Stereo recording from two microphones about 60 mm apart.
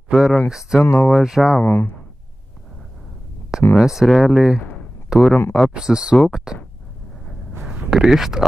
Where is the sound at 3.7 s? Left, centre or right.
Centre.